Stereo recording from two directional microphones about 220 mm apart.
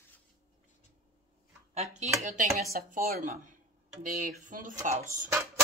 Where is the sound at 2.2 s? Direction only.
35° right (ahead or behind).